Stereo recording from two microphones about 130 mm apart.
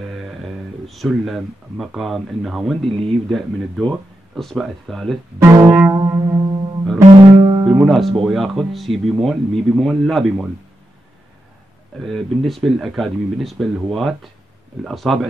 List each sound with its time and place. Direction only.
0.0 s a sound: centre (ahead or behind)
0.8 s speech: centre (ahead or behind)
5.4 s music: 20° right (ahead or behind); by 7.7 s 40° right (ahead or behind)
7.8 s speech: centre (ahead or behind)
12.0 s speech: centre (ahead or behind)